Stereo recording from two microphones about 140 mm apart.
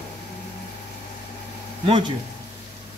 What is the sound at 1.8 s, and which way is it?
Speech, 35° right (ahead or behind).